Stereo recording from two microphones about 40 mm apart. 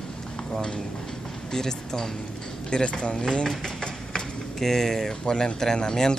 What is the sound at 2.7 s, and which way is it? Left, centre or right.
Speech, left.